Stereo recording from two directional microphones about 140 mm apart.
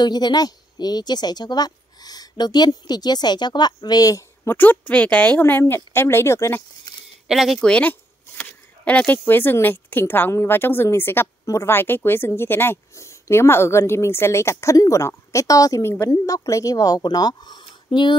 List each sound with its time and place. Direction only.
0.0 s speech: 30° left (ahead or behind)
4.6 s speech: 10° left (ahead or behind)
7.2 s speech: centre (ahead or behind); by 18.1 s 35° left (ahead or behind)